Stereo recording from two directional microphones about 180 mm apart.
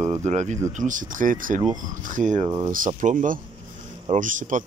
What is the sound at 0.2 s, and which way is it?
Speech, 40° right (ahead or behind).